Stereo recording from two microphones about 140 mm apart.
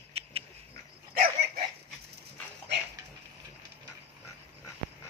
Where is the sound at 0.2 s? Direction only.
45° right (ahead or behind).